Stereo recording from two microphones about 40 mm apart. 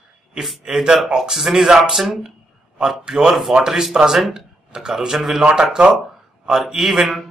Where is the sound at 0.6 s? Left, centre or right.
Centre.